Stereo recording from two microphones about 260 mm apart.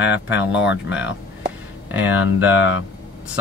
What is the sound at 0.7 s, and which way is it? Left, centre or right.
Speech, left.